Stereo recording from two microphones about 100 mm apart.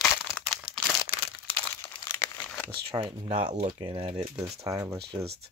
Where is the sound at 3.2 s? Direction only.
90° right.